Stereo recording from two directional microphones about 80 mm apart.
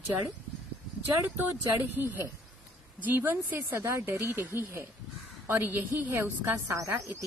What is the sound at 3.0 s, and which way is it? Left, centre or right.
A woman's voice, right.